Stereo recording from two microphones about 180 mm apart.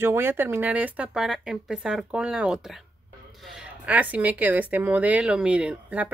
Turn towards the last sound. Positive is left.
turn(degrees=-5)  # may be behind; listen again after turning